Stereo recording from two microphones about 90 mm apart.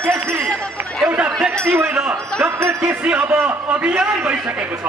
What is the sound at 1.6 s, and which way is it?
Wind chime, 25° right (ahead or behind).